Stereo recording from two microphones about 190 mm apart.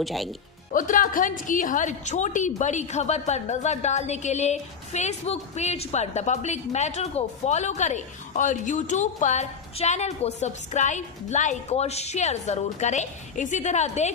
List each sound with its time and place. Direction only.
0.0 s speech: centre (ahead or behind)
0.7 s a woman's voice: 45° left (ahead or behind)